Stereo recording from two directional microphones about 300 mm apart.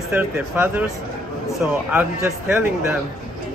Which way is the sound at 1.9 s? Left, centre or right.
Centre.